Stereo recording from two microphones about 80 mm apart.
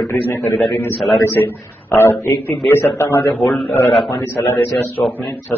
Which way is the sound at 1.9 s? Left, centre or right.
Left.